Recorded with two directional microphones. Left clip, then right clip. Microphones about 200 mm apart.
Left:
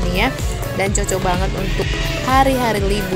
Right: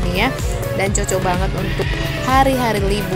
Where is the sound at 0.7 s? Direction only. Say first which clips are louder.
Even; centre (ahead or behind).